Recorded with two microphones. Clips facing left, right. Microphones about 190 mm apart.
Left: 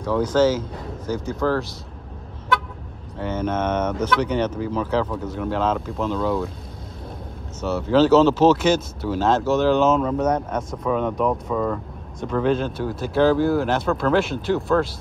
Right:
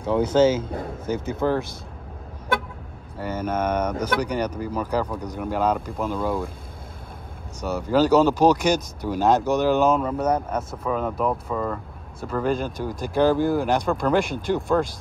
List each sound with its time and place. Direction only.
0.0 s speech: 25° right (ahead or behind)
0.7 s a sound: 55° right (ahead or behind)
3.2 s speech: 10° right (ahead or behind)
7.6 s speech: 10° right (ahead or behind)